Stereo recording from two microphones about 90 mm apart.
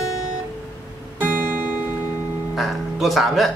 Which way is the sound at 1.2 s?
20° right (ahead or behind).